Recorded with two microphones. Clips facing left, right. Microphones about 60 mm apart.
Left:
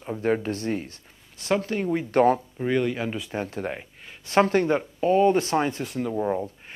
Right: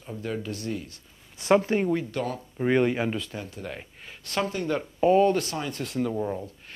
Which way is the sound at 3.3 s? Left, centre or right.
Left.